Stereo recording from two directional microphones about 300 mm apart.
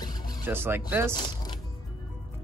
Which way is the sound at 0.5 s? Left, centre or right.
Centre.